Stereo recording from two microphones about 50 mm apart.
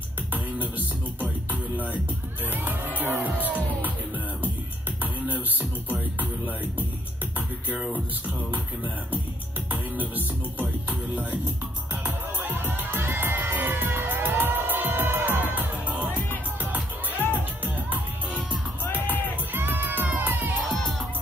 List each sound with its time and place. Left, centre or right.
0.3 s beatboxing: right
1.2 s music: right
2.5 s speech: right
5.0 s music: right
7.7 s music: right
9.9 s speech: right
11.9 s music: right
16.1 s music: left
17.3 s music: right
19.0 s music: left
19.5 s music: right